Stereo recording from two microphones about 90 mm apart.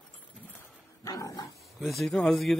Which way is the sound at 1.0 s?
40° left (ahead or behind).